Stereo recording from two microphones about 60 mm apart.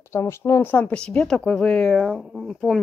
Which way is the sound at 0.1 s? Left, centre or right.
Left.